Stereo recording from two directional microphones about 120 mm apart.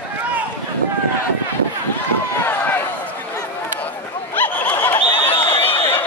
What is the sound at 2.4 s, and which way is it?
Run, 20° left (ahead or behind).